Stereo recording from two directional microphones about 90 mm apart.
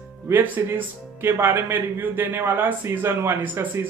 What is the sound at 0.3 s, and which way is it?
Speech, 20° right (ahead or behind).